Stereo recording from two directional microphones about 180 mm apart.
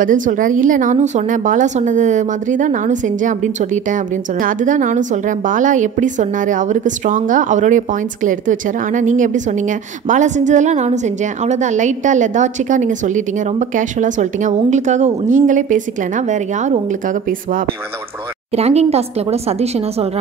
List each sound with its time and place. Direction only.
0.0 s a woman's voice: 45° right (ahead or behind)
18.5 s speech: 35° right (ahead or behind)